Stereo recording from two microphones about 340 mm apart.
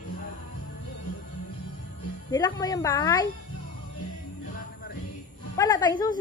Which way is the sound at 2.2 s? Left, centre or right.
Centre.